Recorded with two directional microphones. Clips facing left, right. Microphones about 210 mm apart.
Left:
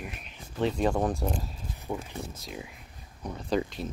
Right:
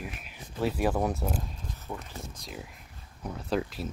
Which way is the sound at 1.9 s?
5° left (ahead or behind).